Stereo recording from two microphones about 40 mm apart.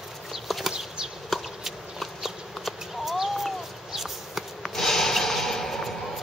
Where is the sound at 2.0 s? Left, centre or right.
Centre.